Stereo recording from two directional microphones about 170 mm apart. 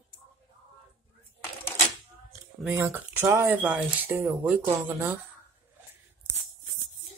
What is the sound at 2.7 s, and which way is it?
Speech, 15° right (ahead or behind).